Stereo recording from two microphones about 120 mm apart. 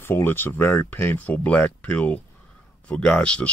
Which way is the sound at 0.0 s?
20° left (ahead or behind).